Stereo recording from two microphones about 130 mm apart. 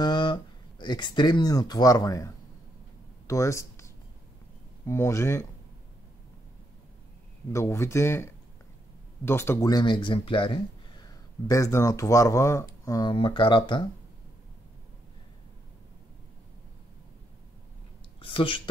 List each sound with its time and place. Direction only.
0.0 s speech: 35° left (ahead or behind); by 5.5 s 20° left (ahead or behind)
7.5 s speech: 20° left (ahead or behind)
9.7 s speech: 35° left (ahead or behind)
13.1 s speech: 40° left (ahead or behind)
18.2 s speech: 40° left (ahead or behind)